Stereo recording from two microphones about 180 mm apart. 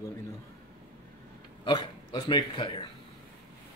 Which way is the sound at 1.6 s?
25° left (ahead or behind).